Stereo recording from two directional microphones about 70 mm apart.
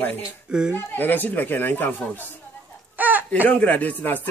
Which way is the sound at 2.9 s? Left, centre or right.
Right.